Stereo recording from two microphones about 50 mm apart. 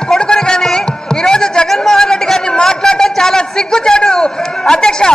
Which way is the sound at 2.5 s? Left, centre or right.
Centre.